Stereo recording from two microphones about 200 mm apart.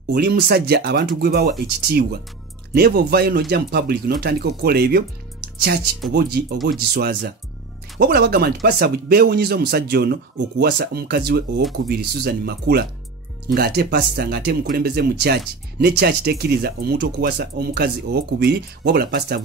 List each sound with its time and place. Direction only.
0.1 s speech: 55° right (ahead or behind)
2.7 s speech: 50° right (ahead or behind)